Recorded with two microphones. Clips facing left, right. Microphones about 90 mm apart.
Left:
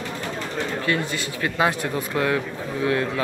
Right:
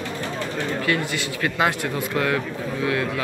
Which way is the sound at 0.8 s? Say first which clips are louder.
Right 1 dB; 25° left (ahead or behind).